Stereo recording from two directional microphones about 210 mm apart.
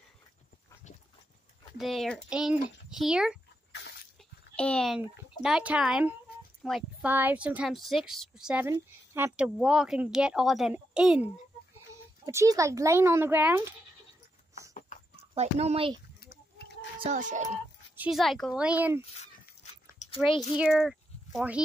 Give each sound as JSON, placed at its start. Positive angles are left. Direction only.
{"t": 1.8, "sound": "a woman's voice", "side_deg": 0}
{"t": 4.6, "sound": "a woman's voice", "side_deg": 5}
{"t": 15.3, "sound": "a child's voice", "side_deg": -30}
{"t": 16.2, "sound": "a sound", "side_deg": 50}
{"t": 17.0, "sound": "speech", "side_deg": -35}
{"t": 17.9, "sound": "a woman's voice", "side_deg": -5}
{"t": 18.9, "sound": "a sound", "side_deg": 30}
{"t": 20.2, "sound": "speech", "side_deg": 25}
{"t": 20.5, "sound": "speech", "side_deg": -5}